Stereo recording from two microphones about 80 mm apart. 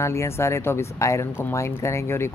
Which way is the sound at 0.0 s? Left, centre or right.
Left.